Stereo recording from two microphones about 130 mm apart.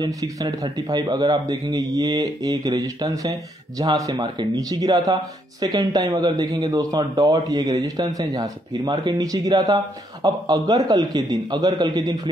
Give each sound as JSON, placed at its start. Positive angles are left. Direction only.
{"t": 0.0, "sound": "a man's voice", "side_deg": -25}